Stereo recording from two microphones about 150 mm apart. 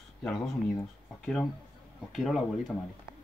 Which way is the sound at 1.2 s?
Centre (ahead or behind).